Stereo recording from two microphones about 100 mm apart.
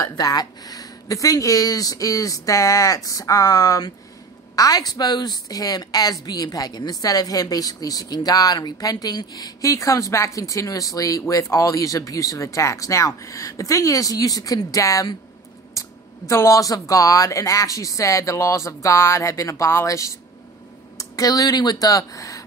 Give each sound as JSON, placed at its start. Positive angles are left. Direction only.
{"t": 0.2, "sound": "speech", "side_deg": 40}